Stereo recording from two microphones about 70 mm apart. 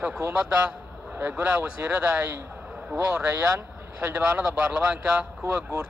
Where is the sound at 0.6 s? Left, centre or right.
Right.